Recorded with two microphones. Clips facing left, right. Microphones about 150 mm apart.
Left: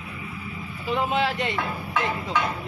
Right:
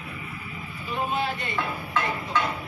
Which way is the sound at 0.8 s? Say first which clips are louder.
Left 4 dB; 90° left.